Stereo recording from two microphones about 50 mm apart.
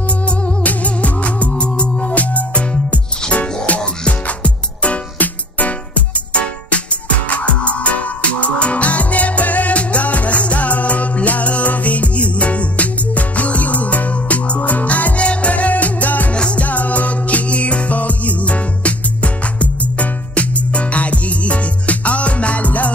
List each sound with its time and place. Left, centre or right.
0.3 s music: left
16.3 s music: left
16.6 s music: left